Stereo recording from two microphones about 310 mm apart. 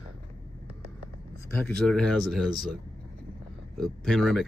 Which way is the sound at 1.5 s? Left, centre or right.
Centre.